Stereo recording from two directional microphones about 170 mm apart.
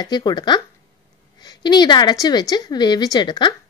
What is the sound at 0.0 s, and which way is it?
A woman's voice, 25° left (ahead or behind).